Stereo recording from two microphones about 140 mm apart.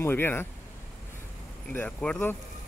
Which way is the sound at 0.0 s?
15° left (ahead or behind).